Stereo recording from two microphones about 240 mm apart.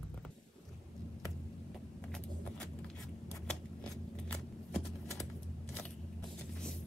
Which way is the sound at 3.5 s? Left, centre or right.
Centre.